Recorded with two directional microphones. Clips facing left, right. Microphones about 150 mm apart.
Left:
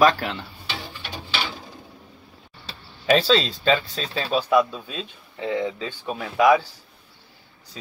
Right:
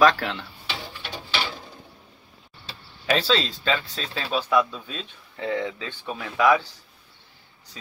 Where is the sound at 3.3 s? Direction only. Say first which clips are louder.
Left 4 dB; 15° left (ahead or behind).